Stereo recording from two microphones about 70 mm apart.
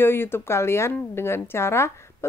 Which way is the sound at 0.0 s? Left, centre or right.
Left.